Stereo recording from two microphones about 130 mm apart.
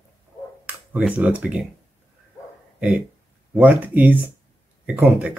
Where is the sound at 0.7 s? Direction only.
10° right (ahead or behind).